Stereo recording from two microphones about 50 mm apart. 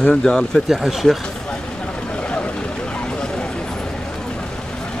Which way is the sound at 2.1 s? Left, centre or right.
Left.